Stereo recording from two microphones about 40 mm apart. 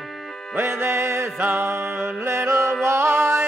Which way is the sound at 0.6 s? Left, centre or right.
Right.